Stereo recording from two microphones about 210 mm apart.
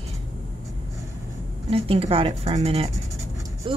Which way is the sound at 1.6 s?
25° right (ahead or behind).